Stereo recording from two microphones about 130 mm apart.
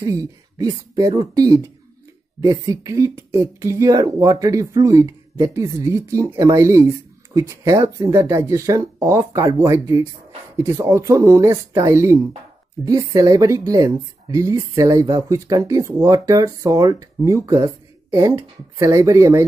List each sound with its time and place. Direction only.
0.0 s speech: 25° right (ahead or behind)